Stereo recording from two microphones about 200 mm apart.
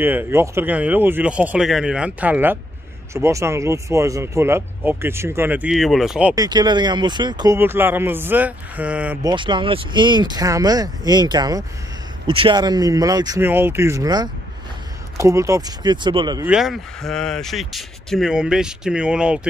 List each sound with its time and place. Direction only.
0.0 s speech: 10° right (ahead or behind)
6.3 s speech: 20° right (ahead or behind)
9.2 s speech: 25° right (ahead or behind)
16.4 s speech: centre (ahead or behind)